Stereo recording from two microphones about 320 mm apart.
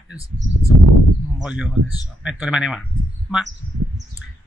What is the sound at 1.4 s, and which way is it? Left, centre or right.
Speech, centre.